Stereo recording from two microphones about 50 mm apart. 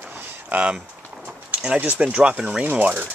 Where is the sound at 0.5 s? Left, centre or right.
Right.